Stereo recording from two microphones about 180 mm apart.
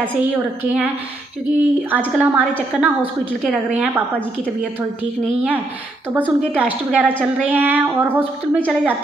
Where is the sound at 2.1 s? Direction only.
10° right (ahead or behind).